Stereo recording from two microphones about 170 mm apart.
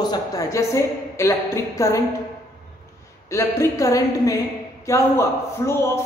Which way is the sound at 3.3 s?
15° left (ahead or behind).